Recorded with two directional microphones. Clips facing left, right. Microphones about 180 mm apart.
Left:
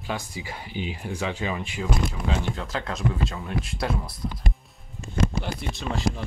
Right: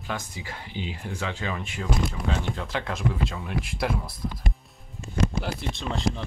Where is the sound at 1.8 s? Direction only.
Centre (ahead or behind).